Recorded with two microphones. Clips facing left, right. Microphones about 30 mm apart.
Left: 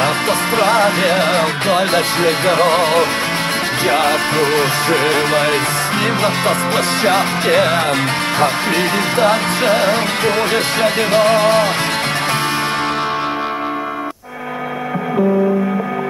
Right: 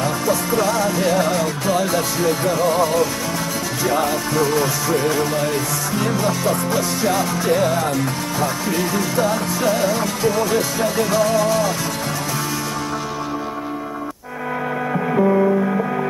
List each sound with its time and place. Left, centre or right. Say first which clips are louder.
0.0 s music: left 4 dB; left
3.8 s speech: left 4 dB; left